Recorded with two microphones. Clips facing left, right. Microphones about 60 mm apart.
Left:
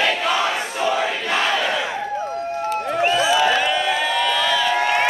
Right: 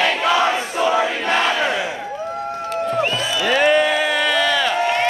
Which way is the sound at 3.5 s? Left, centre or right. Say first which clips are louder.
Right 4 dB; right.